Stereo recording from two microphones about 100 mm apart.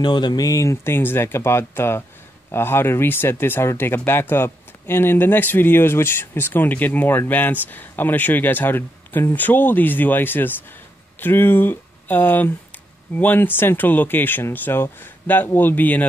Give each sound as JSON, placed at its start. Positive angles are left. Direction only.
{"t": 0.0, "sound": "speech", "side_deg": 50}